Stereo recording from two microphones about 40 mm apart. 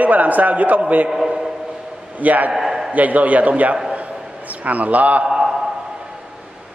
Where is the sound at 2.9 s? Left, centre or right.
Right.